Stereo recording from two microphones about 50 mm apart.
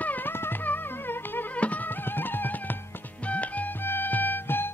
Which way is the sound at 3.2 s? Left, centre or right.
Left.